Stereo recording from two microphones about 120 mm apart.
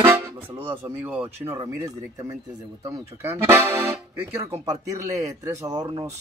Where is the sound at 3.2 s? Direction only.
20° right (ahead or behind).